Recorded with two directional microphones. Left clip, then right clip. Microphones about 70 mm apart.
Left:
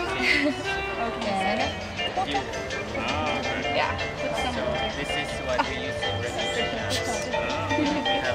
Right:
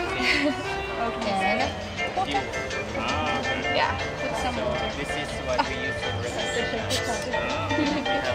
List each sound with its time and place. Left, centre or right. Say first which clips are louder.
0.2 s speech: left 1 dB; centre
3.1 s music: right 1 dB; left